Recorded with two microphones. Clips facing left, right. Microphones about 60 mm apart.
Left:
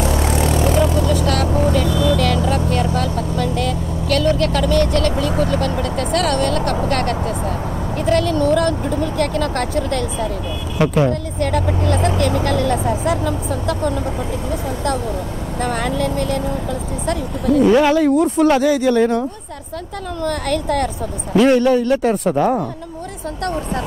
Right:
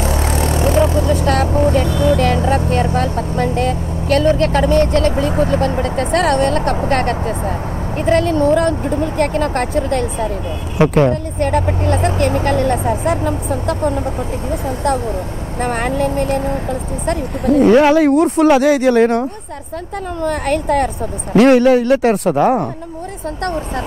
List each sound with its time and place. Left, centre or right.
0.0 s vehicle: right
8.0 s a sound: right
11.0 s speech: right
15.6 s speech: right
17.9 s speech: right
20.6 s speech: right
21.4 s speech: right